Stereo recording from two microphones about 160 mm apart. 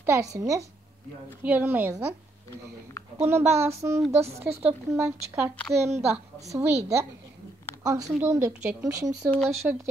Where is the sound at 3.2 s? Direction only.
15° right (ahead or behind).